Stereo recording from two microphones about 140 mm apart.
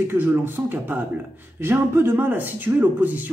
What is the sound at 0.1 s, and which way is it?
Speech, 15° right (ahead or behind).